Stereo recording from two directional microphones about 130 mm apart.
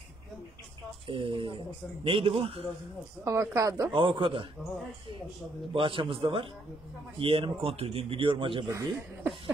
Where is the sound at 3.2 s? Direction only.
25° right (ahead or behind).